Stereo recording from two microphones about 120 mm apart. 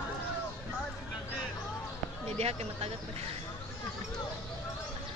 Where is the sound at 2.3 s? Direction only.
60° right (ahead or behind).